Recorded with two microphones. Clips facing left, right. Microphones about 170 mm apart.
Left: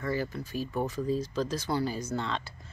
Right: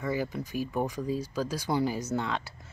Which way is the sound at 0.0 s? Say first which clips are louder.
Right 1 dB; 15° right (ahead or behind).